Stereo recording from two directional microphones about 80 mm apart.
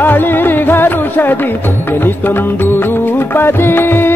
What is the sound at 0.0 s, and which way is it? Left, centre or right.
Music, left.